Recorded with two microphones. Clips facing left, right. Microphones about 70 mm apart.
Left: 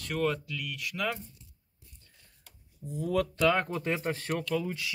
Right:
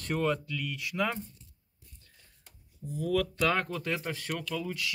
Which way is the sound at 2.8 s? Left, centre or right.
Left.